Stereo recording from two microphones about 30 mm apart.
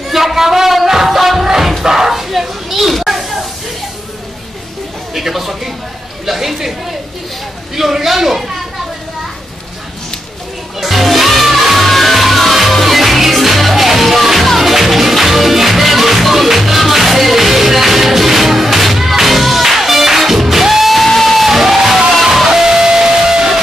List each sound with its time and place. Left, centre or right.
0.1 s a sound: centre
0.8 s music: centre
1.8 s bow-wow: centre
2.9 s children playing: centre
5.1 s a sound: centre
6.2 s chatter: centre
7.7 s a sound: centre
10.8 s music: centre
21.5 s music: centre